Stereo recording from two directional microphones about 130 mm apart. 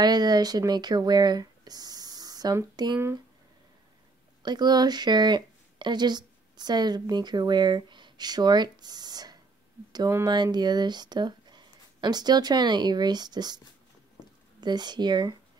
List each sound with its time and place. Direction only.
0.0 s speech: 30° right (ahead or behind)
4.4 s speech: 35° right (ahead or behind)
14.6 s speech: 35° right (ahead or behind)